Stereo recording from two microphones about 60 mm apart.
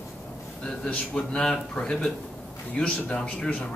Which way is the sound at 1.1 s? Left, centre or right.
Centre.